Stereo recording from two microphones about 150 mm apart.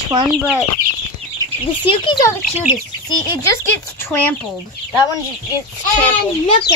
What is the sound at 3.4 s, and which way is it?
Speech, 15° left (ahead or behind).